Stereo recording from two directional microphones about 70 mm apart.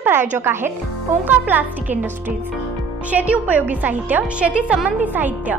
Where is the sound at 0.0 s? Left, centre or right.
Right.